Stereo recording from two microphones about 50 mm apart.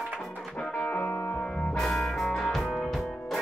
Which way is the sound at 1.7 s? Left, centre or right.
Centre.